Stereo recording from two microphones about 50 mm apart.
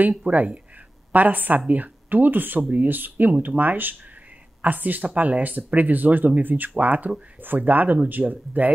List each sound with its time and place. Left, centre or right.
0.3 s speech: right